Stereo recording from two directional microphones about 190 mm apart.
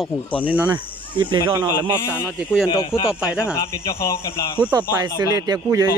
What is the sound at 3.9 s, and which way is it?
Speech, 15° left (ahead or behind).